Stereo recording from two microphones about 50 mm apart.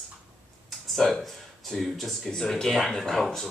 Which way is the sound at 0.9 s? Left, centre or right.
Centre.